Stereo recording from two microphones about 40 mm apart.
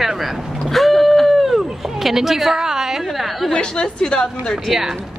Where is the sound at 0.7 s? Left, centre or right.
Centre.